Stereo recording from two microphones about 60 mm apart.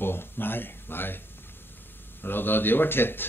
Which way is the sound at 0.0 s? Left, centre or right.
Left.